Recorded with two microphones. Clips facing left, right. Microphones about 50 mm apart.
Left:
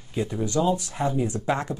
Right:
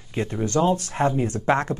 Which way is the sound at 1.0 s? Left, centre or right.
Right.